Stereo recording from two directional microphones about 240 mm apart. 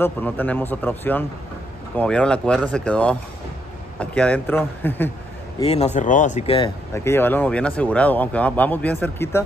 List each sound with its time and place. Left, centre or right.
0.0 s speech: centre
5.6 s speech: left
6.9 s speech: centre